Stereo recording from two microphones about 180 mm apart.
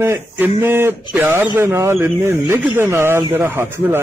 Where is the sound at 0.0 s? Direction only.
15° right (ahead or behind).